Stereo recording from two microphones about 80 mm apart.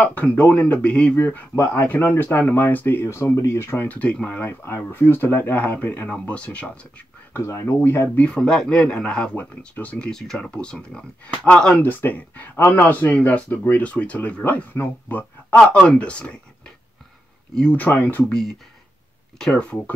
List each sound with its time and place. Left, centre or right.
0.0 s speech: centre
1.5 s speech: left
7.3 s speech: left
8.3 s speech: centre
11.8 s a man's voice: left
18.3 s speech: centre